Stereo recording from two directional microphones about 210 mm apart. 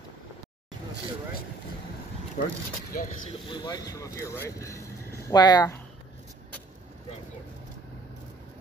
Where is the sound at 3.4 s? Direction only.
20° left (ahead or behind).